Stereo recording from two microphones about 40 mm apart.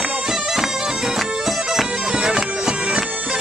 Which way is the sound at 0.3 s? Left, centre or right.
Centre.